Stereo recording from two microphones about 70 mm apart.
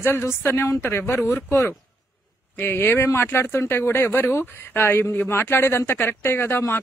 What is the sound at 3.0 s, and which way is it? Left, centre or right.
Speech, left.